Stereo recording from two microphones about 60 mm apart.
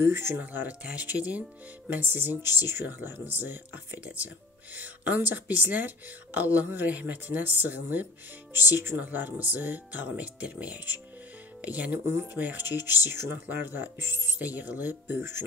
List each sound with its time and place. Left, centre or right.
0.0 s speech: right
0.5 s speech: right
1.9 s speech: right
11.9 s speech: right
14.4 s speech: right